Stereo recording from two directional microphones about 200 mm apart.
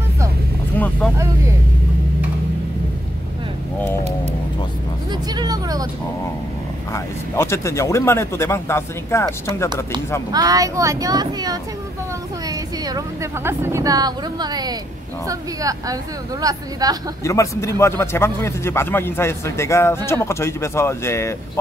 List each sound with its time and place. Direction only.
0.7 s vehicle: 5° left (ahead or behind)
5.1 s vehicle: 20° right (ahead or behind)
6.9 s speech: 15° left (ahead or behind)
10.3 s a woman's voice: 20° right (ahead or behind)
17.2 s speech: 15° left (ahead or behind)